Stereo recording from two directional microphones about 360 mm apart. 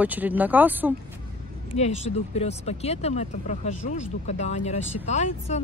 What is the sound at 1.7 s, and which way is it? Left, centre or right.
Speech, centre.